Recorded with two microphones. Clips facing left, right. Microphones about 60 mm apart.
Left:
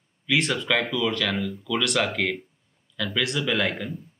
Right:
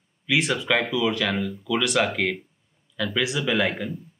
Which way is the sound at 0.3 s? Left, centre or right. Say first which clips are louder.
Right 1 dB; centre.